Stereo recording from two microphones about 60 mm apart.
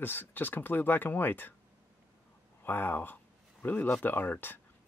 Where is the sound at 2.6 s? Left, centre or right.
Left.